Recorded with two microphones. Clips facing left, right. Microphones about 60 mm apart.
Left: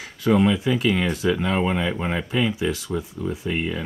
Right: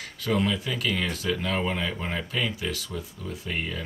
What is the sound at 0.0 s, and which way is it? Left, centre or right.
Speech, centre.